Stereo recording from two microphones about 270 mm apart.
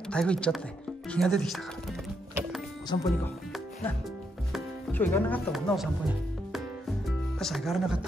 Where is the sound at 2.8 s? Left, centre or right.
Centre.